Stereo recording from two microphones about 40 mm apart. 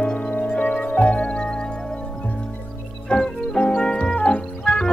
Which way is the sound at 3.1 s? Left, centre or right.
Left.